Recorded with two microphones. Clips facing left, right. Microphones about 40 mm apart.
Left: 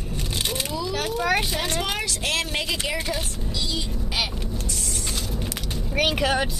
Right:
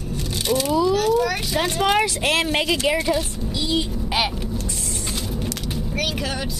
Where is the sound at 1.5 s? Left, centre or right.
Centre.